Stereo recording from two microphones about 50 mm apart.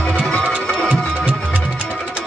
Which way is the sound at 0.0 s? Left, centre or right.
Left.